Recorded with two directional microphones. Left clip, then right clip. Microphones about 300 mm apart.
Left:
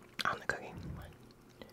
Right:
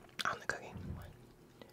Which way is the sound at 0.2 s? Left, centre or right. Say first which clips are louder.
Left 2 dB; centre.